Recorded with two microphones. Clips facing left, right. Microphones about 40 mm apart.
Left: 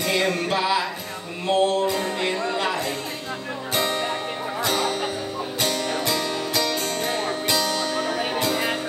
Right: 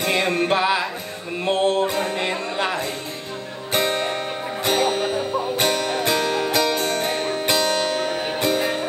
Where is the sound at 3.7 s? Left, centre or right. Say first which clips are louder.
Right 3 dB; right.